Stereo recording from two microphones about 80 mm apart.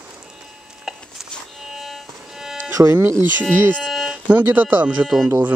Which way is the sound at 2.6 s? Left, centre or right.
Right.